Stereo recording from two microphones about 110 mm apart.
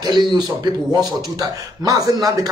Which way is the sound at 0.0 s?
40° right (ahead or behind).